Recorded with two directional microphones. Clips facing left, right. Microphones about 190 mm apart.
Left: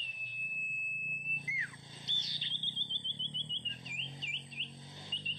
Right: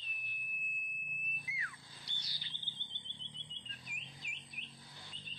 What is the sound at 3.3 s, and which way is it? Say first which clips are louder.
Bird: left 7 dB; 20° left (ahead or behind).